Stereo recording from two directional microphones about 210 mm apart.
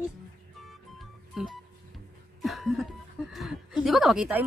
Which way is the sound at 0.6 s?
Centre (ahead or behind).